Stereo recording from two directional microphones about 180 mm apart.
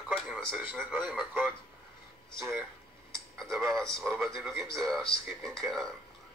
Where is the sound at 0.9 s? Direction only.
10° right (ahead or behind).